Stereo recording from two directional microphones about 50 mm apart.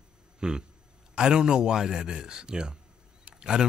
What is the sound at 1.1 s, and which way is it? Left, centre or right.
Speech, centre.